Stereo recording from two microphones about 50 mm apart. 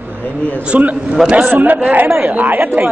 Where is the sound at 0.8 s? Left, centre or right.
Right.